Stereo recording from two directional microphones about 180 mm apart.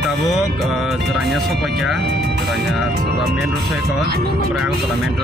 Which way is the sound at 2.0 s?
65° right (ahead or behind).